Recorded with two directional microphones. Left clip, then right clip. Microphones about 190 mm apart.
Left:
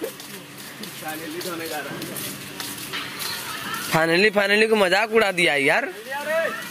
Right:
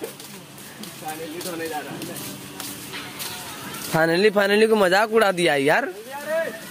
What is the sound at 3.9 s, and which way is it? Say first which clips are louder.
Speech: even; 15° right (ahead or behind).